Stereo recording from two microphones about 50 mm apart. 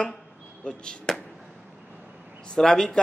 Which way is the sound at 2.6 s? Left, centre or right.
Centre.